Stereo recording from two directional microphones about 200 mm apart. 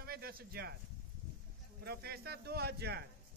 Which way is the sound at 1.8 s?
50° right (ahead or behind).